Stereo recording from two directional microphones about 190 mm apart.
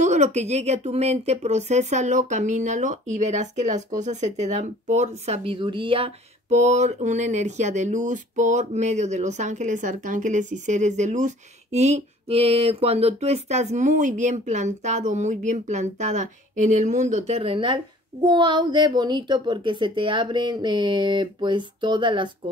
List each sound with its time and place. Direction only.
0.0 s speech: 35° right (ahead or behind)